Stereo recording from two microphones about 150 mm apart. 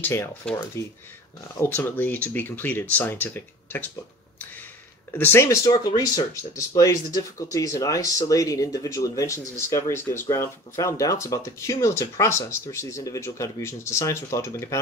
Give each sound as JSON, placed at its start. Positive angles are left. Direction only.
{"t": 0.0, "sound": "speech", "side_deg": 20}
{"t": 5.1, "sound": "speech", "side_deg": 15}